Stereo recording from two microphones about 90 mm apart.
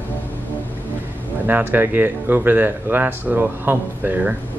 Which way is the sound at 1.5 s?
20° right (ahead or behind).